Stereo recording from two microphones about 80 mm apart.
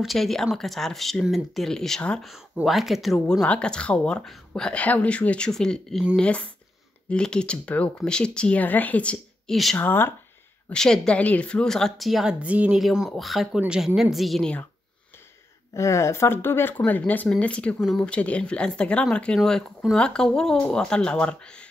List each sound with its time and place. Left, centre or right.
0.0 s speech: centre
2.5 s speech: centre
3.3 s speech: centre
9.5 s speech: centre
9.8 s speech: left
10.7 s speech: centre
12.4 s speech: centre
12.7 s speech: centre
15.7 s speech: left; by 21.6 s centre